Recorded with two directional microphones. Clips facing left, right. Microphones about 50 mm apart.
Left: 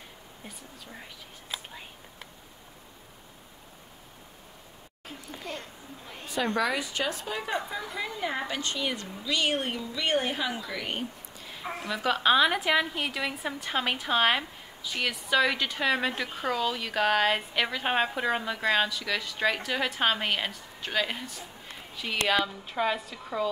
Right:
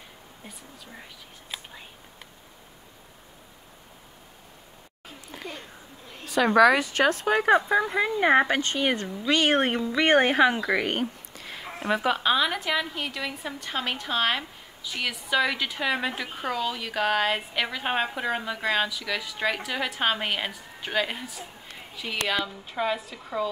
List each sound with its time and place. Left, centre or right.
5.4 s speech: centre
6.2 s speech: right
7.5 s a woman's voice: right
12.2 s a woman's voice: centre